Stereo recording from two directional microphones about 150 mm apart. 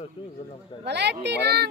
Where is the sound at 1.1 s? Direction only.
90° right.